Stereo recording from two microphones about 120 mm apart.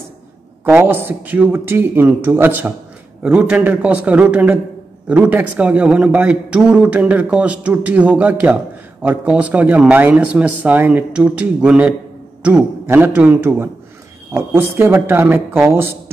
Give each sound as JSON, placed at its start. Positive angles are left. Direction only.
{"t": 0.7, "sound": "a man's voice", "side_deg": -15}